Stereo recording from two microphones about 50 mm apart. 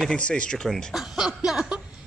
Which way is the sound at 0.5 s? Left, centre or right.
Centre.